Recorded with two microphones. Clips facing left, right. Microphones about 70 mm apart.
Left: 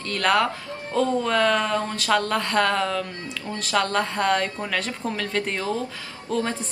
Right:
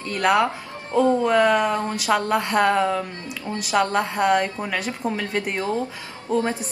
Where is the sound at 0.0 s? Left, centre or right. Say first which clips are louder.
Right 2 dB; centre.